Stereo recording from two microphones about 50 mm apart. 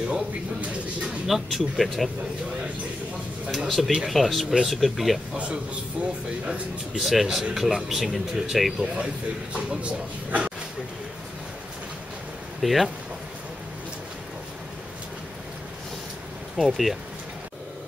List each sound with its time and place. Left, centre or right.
0.0 s speech: right
1.2 s speech: centre
3.5 s speech: centre
7.0 s speech: centre
8.8 s speech: right
12.6 s speech: centre
16.5 s speech: centre